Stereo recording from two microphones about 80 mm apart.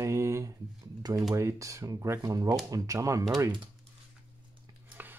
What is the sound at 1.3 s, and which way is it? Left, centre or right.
Speech, right.